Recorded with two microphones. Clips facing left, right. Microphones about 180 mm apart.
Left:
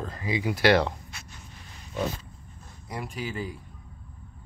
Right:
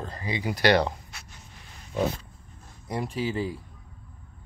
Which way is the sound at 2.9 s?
30° right (ahead or behind).